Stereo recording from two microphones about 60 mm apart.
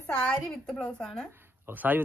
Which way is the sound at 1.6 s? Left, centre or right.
Right.